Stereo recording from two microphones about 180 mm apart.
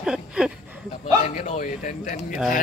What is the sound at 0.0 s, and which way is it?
Speech, 5° right (ahead or behind).